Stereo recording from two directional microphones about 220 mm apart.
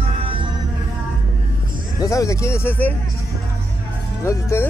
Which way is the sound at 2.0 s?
15° left (ahead or behind).